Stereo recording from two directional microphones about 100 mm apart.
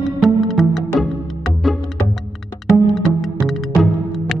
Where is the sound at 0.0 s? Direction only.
Centre (ahead or behind).